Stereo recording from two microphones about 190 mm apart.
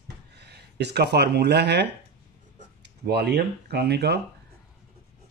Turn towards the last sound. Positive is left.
turn(degrees=-60)  # may be behind; listen again after turning